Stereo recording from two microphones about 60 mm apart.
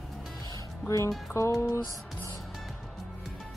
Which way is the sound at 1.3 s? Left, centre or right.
Left.